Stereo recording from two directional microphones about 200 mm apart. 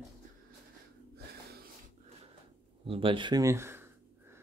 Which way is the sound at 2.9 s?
25° right (ahead or behind).